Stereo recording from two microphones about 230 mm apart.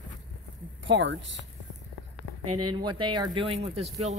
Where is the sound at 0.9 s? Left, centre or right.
Right.